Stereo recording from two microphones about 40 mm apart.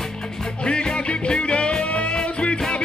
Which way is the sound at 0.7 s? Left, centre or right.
Left.